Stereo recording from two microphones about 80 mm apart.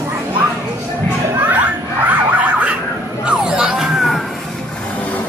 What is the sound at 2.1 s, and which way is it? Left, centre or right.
Siren, centre.